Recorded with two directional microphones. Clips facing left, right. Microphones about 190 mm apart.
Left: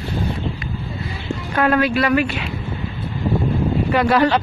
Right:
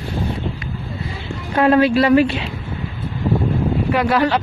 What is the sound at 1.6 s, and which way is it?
Speech, 30° right (ahead or behind).